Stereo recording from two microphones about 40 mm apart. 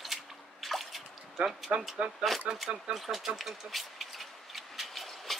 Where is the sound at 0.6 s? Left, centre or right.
Centre.